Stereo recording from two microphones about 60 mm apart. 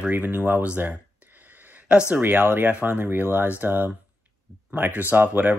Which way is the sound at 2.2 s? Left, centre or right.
Right.